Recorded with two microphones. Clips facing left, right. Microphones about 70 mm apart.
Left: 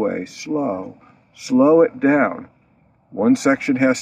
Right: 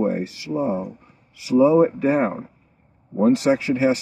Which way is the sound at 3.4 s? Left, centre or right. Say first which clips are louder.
Left 2 dB; left.